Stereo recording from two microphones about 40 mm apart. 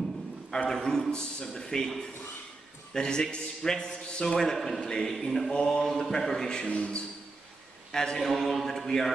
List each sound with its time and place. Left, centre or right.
0.7 s a man's voice: centre
4.4 s a man's voice: centre
4.8 s a man's voice: centre
5.1 s a sound: centre
5.7 s a man's voice: centre
6.7 s a man's voice: left
7.9 s a man's voice: centre
8.3 s a man's voice: centre